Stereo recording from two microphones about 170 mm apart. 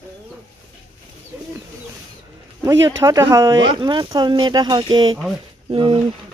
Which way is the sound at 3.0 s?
20° right (ahead or behind).